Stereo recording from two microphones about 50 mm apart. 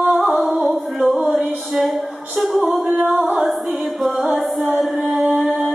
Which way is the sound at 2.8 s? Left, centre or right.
Right.